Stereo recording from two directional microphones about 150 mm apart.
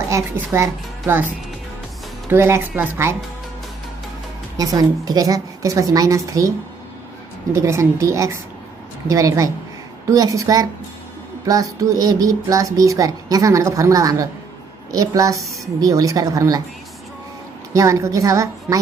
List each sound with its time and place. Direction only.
0.1 s speech: 20° right (ahead or behind)
4.6 s speech: 25° right (ahead or behind)
7.5 s speech: 20° right (ahead or behind)
17.7 s speech: 20° right (ahead or behind)